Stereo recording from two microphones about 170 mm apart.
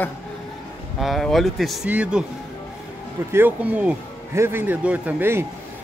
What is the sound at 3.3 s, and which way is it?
Speech, 10° right (ahead or behind).